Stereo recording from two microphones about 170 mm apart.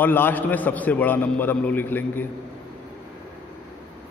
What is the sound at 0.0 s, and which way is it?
A man's voice, 10° left (ahead or behind).